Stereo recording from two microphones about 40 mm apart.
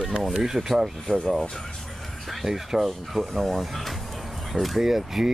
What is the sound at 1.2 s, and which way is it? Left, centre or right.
Speech, centre.